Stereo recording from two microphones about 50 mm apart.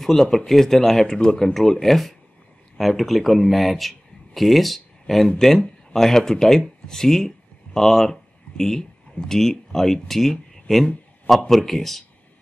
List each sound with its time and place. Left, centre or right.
0.0 s a man's voice: centre